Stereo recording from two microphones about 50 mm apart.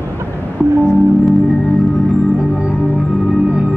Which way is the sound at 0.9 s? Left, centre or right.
Centre.